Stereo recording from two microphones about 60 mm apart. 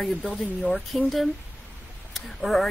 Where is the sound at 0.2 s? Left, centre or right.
Left.